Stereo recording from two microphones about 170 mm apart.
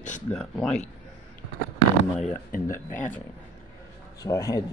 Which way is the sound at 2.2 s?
50° left (ahead or behind).